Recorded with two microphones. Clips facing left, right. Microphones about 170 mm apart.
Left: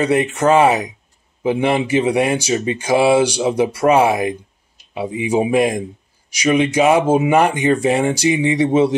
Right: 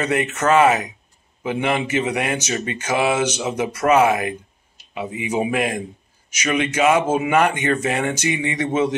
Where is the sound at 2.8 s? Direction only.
35° left (ahead or behind).